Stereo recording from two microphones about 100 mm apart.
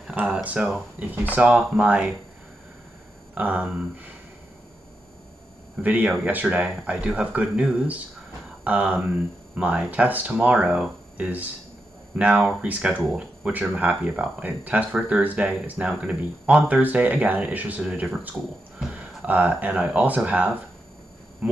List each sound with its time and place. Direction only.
0.0 s speech: 10° right (ahead or behind)
3.3 s speech: 15° right (ahead or behind)
5.8 s speech: 15° right (ahead or behind)